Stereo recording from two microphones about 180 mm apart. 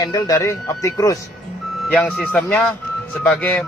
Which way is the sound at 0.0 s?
20° left (ahead or behind).